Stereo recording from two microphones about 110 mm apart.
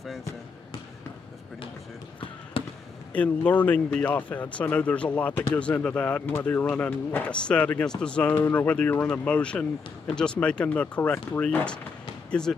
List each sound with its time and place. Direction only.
2.6 s basketball bounce: 50° left (ahead or behind)
3.1 s speech: 15° left (ahead or behind)